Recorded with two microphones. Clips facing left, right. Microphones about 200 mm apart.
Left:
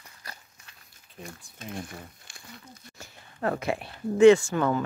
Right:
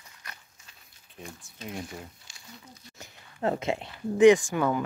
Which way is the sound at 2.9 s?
20° right (ahead or behind).